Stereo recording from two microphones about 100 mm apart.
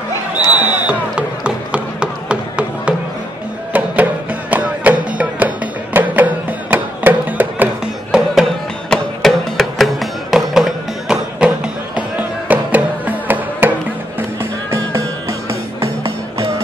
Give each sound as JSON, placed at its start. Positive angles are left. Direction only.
{"t": 0.6, "sound": "chop", "side_deg": -10}
{"t": 3.7, "sound": "music", "side_deg": -15}
{"t": 14.4, "sound": "music", "side_deg": -30}